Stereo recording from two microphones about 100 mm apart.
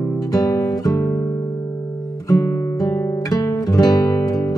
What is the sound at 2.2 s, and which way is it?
Guitar, 35° left (ahead or behind).